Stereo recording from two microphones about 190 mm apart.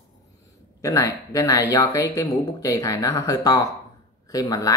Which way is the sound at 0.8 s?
15° left (ahead or behind).